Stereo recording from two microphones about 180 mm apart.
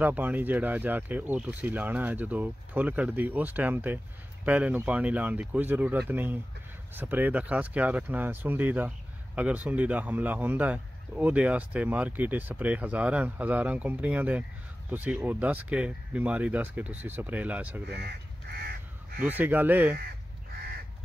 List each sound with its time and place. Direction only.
0.0 s speech: 10° right (ahead or behind)
17.8 s crow: 65° right (ahead or behind)
19.2 s speech: 10° right (ahead or behind)